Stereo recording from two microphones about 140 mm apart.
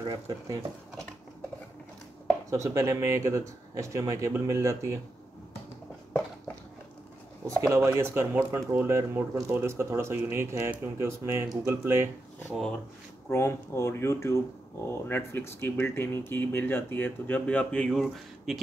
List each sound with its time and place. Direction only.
0.1 s speech: 25° right (ahead or behind)
2.5 s speech: 20° right (ahead or behind)
7.6 s speech: 20° right (ahead or behind)
13.3 s speech: 20° left (ahead or behind); by 18.6 s centre (ahead or behind)